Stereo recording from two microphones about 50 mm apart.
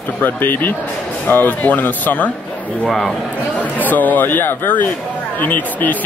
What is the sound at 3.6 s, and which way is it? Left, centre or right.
A man's voice, left.